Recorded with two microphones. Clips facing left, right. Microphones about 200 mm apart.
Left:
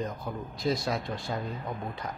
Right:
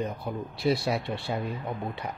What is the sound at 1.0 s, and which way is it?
Speech, 65° right (ahead or behind).